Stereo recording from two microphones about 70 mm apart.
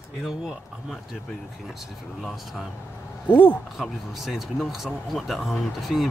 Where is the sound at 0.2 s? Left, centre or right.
Centre.